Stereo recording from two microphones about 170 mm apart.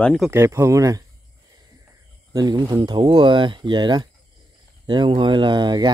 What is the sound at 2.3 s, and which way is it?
Speech, 25° right (ahead or behind).